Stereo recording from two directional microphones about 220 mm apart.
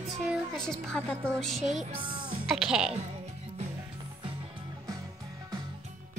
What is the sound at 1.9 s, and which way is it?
Speech, 25° right (ahead or behind).